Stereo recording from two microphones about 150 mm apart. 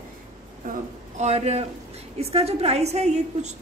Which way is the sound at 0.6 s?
50° right (ahead or behind).